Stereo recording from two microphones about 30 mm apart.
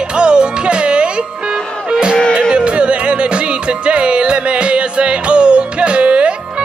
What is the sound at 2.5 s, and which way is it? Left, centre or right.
Music, right.